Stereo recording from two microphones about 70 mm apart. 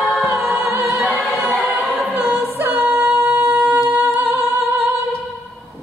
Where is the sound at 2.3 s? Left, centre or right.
Right.